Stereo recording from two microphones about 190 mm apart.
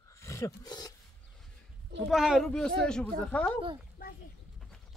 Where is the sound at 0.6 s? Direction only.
20° left (ahead or behind).